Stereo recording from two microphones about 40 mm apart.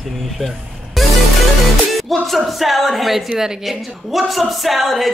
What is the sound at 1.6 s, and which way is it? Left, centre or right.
Speech, centre.